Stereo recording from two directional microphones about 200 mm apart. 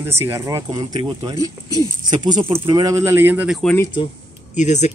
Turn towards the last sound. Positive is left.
turn(degrees=35)  # may be behind; listen again after turning